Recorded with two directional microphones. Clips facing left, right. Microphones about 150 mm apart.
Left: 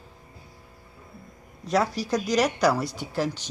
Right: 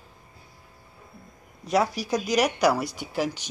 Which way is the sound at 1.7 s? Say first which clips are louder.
Even; 10° right (ahead or behind).